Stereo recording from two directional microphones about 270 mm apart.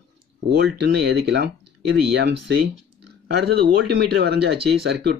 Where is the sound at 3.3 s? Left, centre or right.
Right.